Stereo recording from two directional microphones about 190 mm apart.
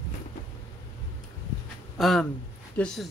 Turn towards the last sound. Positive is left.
turn(degrees=5)  # may be behind; listen again after turning